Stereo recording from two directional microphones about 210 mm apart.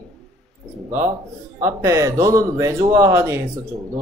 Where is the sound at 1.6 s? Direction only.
15° right (ahead or behind).